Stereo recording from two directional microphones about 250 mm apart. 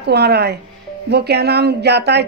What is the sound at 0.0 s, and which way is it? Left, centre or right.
Speech, right.